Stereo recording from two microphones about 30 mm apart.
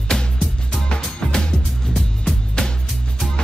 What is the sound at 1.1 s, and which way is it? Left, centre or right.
Music, left.